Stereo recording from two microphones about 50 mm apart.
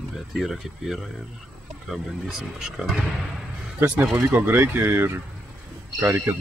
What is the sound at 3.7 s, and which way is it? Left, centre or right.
Speech, right.